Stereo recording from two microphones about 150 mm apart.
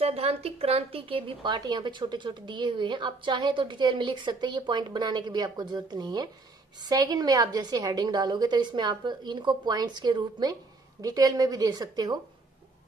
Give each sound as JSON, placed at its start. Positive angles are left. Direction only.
{"t": 0.0, "sound": "a woman's voice", "side_deg": -45}